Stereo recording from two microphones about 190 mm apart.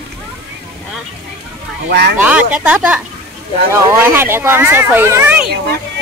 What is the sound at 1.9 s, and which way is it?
Speech, 55° right (ahead or behind).